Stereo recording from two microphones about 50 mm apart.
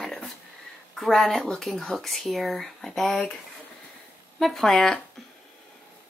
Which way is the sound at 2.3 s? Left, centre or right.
Centre.